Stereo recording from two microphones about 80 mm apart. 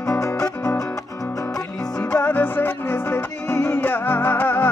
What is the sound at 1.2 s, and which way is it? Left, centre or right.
Music, left.